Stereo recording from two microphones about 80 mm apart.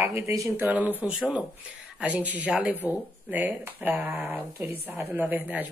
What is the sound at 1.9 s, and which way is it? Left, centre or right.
Speech, centre.